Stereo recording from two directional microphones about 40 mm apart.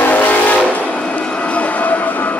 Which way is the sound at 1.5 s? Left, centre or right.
Left.